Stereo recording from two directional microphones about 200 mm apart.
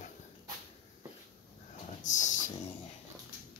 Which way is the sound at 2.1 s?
40° left (ahead or behind).